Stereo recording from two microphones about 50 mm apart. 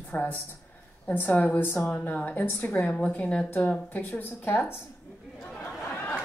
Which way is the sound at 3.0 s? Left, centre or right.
Left.